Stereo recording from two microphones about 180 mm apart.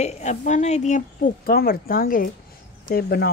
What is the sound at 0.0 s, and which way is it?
Speech, 40° left (ahead or behind).